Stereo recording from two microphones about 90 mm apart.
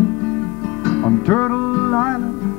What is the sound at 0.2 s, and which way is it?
Music, 10° left (ahead or behind).